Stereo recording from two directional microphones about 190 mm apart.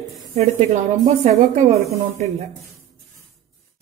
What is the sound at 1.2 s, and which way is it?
Speech, 35° right (ahead or behind).